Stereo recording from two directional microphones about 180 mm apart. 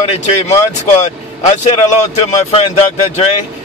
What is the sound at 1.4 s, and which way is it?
Speech, 35° left (ahead or behind).